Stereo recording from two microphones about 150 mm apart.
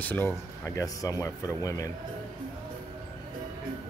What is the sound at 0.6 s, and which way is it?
Speech, 20° left (ahead or behind).